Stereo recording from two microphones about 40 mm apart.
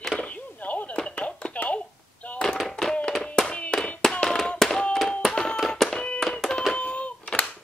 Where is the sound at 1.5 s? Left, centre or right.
Left.